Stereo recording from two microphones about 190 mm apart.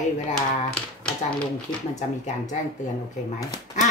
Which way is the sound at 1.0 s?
5° left (ahead or behind).